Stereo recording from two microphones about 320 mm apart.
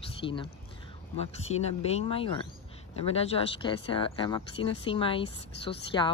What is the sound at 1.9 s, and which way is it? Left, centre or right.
Speech, centre.